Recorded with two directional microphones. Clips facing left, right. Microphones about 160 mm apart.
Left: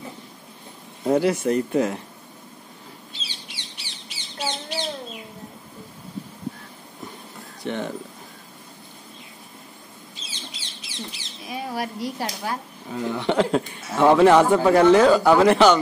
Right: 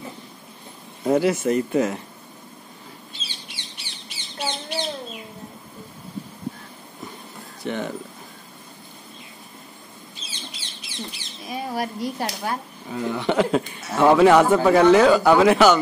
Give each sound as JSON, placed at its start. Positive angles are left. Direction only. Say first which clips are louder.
{"t": 1.0, "sound": "speech", "louder": "right 1 dB", "side_deg": -5}
{"t": 3.1, "sound": "bird", "louder": "even", "side_deg": -50}
{"t": 7.6, "sound": "speech", "louder": "right 1 dB", "side_deg": -5}
{"t": 10.5, "sound": "chicken", "louder": "right 1 dB", "side_deg": -55}
{"t": 11.5, "sound": "a sound", "louder": "right 2 dB", "side_deg": -45}
{"t": 12.9, "sound": "speech", "louder": "even", "side_deg": 0}